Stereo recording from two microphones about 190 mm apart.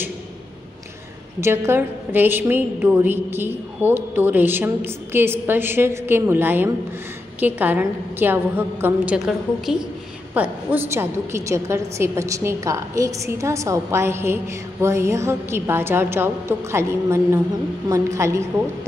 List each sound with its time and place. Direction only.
1.4 s a woman's voice: 10° right (ahead or behind)